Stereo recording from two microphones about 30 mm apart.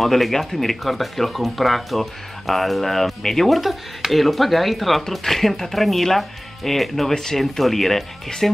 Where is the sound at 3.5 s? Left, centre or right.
Centre.